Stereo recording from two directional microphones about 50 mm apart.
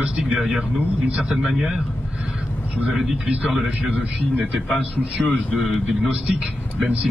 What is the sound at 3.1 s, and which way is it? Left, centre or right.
Speech, right.